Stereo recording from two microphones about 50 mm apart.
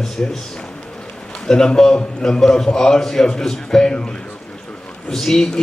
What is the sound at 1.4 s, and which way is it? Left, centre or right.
A man's voice, centre.